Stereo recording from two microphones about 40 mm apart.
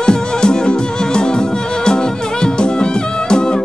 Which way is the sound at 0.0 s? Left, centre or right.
Centre.